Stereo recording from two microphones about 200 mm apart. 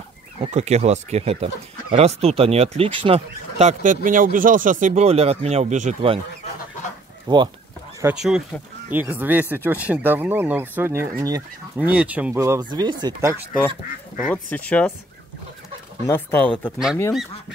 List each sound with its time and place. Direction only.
0.4 s speech: 35° right (ahead or behind)
7.3 s speech: 20° right (ahead or behind)
8.0 s speech: 5° right (ahead or behind)
14.2 s speech: 10° left (ahead or behind)
16.1 s speech: 10° left (ahead or behind)